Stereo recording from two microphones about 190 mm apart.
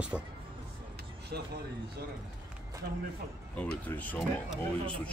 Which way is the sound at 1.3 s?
60° right (ahead or behind).